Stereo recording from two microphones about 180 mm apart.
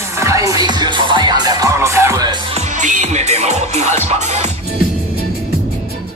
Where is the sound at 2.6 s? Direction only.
40° right (ahead or behind).